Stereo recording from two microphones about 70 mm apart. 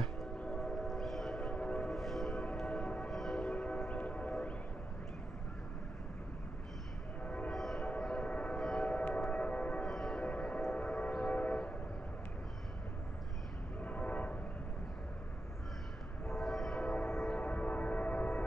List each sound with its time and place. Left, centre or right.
0.4 s train: centre
1.5 s train: centre
2.0 s a sound: centre
3.1 s train: centre
7.2 s train: centre
7.5 s train: centre
8.0 s train: centre
9.8 s a sound: centre
10.3 s a sound: centre
10.8 s train: centre
13.7 s train: left
16.3 s train: centre
17.4 s a sound: centre